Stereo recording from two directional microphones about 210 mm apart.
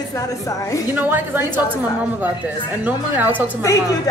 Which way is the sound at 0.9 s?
10° right (ahead or behind).